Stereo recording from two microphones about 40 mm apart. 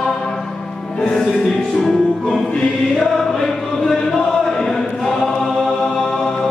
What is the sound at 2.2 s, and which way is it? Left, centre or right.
Music, centre.